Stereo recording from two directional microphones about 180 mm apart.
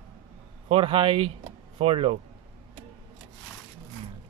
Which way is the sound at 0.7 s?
30° right (ahead or behind).